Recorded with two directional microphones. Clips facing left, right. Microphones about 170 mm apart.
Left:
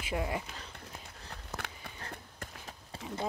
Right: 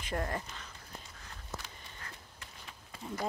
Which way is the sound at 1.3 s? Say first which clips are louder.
Left 3 dB; 65° left (ahead or behind).